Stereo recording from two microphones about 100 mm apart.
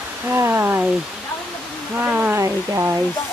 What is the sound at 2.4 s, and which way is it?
Speech, 30° right (ahead or behind).